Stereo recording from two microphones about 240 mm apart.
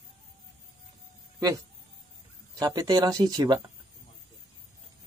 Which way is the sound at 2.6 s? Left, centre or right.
Centre.